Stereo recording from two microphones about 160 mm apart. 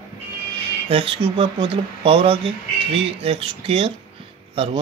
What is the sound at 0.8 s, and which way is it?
Speech, 35° right (ahead or behind).